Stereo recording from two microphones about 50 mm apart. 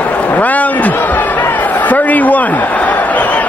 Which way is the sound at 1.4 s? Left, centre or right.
Left.